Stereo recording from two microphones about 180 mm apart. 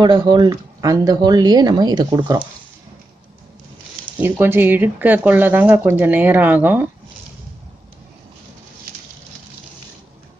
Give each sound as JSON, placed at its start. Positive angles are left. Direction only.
{"t": 0.0, "sound": "speech", "side_deg": -25}
{"t": 4.2, "sound": "speech", "side_deg": -10}